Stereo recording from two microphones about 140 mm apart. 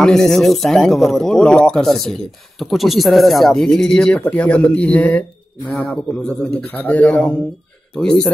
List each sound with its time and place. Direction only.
0.0 s a man's voice: 5° left (ahead or behind)